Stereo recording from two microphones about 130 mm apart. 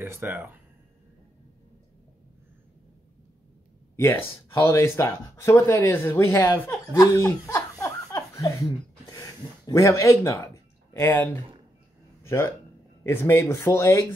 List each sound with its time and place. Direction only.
0.0 s speech: 15° right (ahead or behind)
3.9 s speech: 20° left (ahead or behind)